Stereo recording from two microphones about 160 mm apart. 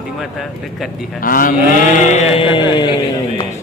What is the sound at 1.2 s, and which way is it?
Speech, 60° left (ahead or behind).